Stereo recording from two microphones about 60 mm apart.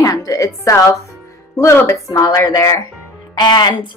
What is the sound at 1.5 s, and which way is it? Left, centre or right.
Speech, left.